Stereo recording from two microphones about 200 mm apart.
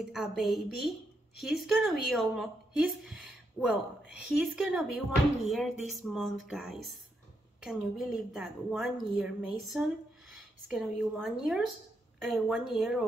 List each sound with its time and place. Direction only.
0.4 s a woman's voice: centre (ahead or behind)